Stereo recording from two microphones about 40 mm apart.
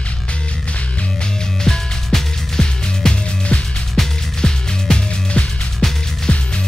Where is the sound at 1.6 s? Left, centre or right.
Centre.